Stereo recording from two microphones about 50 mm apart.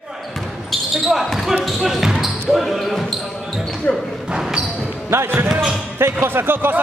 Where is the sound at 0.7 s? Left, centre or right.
Centre.